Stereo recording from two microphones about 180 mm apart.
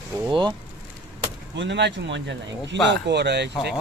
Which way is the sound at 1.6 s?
80° right.